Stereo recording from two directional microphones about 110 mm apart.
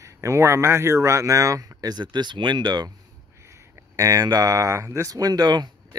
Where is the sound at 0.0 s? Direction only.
25° right (ahead or behind).